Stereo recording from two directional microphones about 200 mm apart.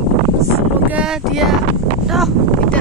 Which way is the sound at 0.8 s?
5° right (ahead or behind).